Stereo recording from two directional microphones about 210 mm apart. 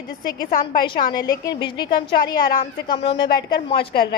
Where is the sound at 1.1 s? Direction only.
15° left (ahead or behind).